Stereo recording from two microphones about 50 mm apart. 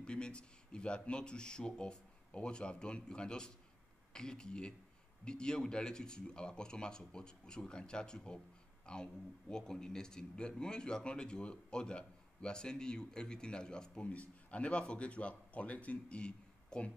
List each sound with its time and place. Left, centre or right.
0.0 s speech: centre